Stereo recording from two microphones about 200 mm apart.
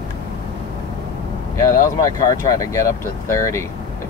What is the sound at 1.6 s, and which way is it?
Speech, 15° left (ahead or behind).